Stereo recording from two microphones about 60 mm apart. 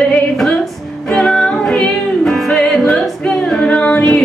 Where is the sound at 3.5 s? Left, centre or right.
Centre.